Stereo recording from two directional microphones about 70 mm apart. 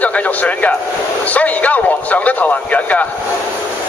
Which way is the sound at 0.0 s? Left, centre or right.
Left.